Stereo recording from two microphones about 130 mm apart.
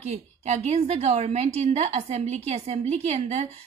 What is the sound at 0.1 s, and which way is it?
A woman's voice, 65° right (ahead or behind).